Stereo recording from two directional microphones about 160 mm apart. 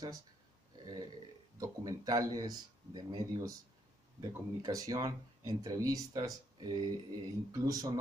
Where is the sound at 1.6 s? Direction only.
25° right (ahead or behind).